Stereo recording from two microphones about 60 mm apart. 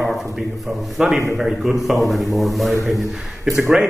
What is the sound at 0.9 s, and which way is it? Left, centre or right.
A man's voice, centre.